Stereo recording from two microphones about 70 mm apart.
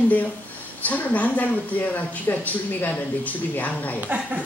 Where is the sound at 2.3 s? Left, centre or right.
Left.